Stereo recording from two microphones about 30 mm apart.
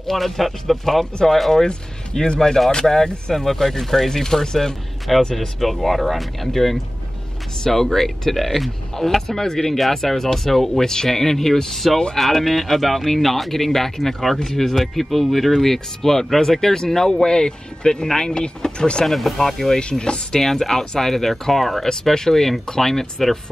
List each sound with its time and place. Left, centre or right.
0.0 s speech: centre
2.1 s speech: centre; by 19.0 s left
19.0 s speech: centre
19.8 s speech: left
20.3 s speech: centre
22.0 s speech: centre